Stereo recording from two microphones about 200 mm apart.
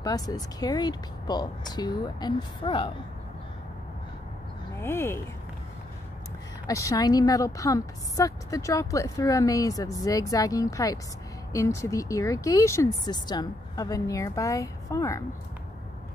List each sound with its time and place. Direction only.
0.0 s speech: 20° left (ahead or behind)
4.7 s speech: 10° left (ahead or behind)
6.7 s speech: 15° left (ahead or behind)